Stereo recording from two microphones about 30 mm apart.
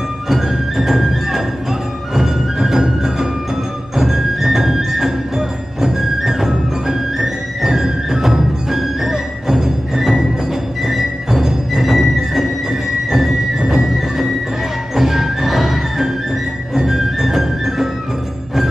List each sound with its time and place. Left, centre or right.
0.3 s music: centre
13.1 s music: centre